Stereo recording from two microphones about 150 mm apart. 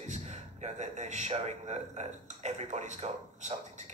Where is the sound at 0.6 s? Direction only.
50° right (ahead or behind).